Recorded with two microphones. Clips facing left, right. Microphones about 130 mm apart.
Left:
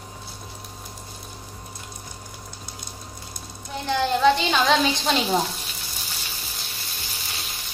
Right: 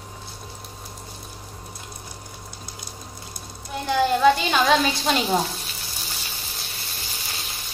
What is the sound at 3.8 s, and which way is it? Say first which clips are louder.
A woman's voice: right 2 dB; 5° right (ahead or behind).